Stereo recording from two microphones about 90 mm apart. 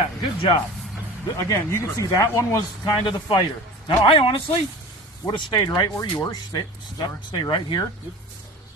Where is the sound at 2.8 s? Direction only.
60° left (ahead or behind); by 4.6 s 85° left.